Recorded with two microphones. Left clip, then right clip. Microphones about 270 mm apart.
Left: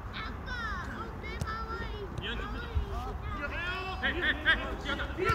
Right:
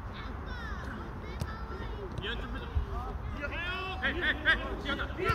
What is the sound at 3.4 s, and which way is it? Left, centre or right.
Vehicle, centre.